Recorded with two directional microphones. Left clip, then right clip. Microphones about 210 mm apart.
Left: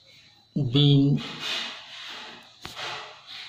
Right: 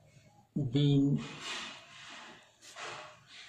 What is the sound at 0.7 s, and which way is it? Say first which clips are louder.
Speech: left 10 dB; 25° left (ahead or behind).